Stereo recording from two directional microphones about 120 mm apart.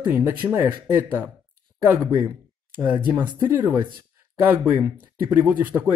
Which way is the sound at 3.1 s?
35° right (ahead or behind).